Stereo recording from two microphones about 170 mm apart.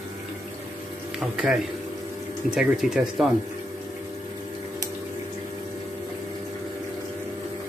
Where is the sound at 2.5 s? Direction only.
5° right (ahead or behind).